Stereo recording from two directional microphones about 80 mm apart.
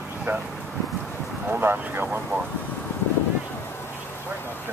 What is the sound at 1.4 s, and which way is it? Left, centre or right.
Boat, right.